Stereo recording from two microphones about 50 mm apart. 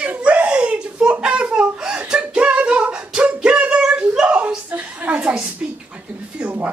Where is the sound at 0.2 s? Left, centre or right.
Right.